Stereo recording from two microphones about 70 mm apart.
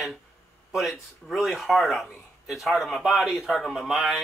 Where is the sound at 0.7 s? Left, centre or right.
Centre.